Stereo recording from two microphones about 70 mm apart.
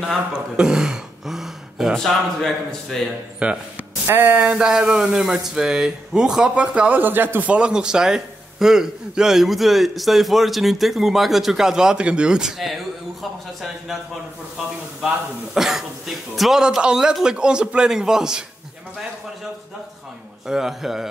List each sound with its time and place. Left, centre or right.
0.0 s speech: centre
3.4 s a man's voice: centre
4.1 s a sound: right
4.4 s a man's voice: centre
7.0 s a man's voice: right; by 12.8 s centre
15.5 s a man's voice: centre
20.4 s a man's voice: centre